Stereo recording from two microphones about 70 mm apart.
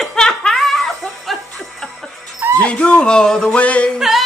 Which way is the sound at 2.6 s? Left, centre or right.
Centre.